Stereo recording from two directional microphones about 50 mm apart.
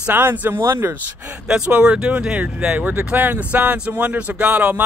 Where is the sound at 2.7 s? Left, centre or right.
Right.